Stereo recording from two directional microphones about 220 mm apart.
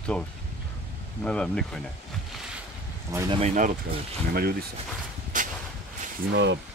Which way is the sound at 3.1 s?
15° right (ahead or behind).